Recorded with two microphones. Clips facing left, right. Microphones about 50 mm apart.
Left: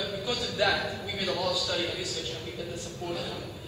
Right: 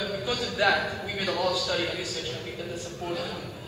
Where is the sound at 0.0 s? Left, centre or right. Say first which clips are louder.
Right 2 dB; right.